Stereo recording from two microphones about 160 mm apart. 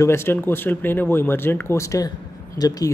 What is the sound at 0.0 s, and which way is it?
Speech, 15° left (ahead or behind).